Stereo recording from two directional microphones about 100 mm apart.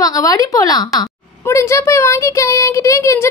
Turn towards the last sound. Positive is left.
turn(degrees=30)  # may be behind; listen again after turning